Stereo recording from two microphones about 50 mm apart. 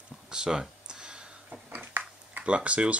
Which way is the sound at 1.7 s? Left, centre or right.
Right.